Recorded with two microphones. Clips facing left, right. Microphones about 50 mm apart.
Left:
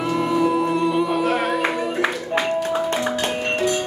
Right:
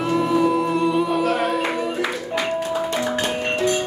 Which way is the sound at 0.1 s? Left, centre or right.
Centre.